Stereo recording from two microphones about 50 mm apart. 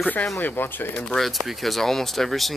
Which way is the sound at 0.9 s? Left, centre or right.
Centre.